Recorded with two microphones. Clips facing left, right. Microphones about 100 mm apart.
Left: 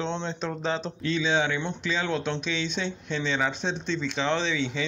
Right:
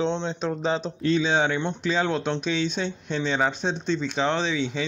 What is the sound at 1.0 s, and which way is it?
Speech, 40° right (ahead or behind).